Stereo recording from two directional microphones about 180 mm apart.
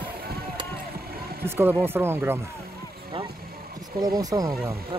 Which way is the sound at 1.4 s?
10° right (ahead or behind).